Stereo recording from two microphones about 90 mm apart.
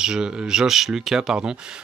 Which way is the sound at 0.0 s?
10° right (ahead or behind).